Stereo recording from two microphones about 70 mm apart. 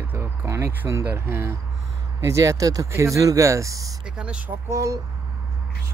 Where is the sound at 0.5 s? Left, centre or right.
Right.